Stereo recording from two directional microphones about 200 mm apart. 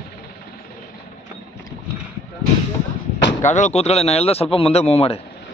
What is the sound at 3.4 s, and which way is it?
Speech, 35° left (ahead or behind).